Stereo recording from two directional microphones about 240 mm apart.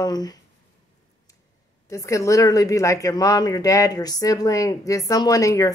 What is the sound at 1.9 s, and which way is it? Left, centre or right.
Speech, centre.